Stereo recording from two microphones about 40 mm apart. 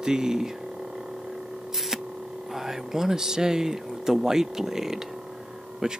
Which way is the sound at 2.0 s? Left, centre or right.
Centre.